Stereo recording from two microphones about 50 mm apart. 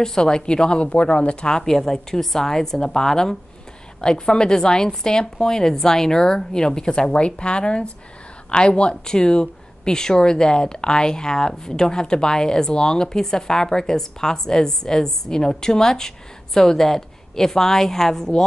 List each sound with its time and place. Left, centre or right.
0.0 s speech: centre